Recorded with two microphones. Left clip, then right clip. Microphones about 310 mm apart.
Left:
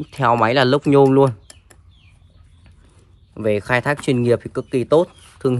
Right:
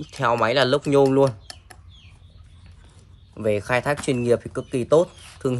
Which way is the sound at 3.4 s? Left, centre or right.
Left.